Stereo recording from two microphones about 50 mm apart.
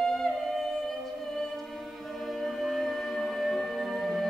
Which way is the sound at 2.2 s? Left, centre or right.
Centre.